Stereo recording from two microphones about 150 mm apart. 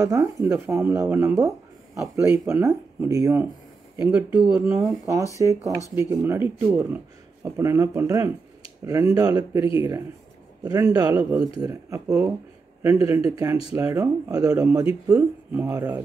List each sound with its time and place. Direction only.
0.0 s speech: 20° right (ahead or behind)
15.1 s speech: 10° right (ahead or behind)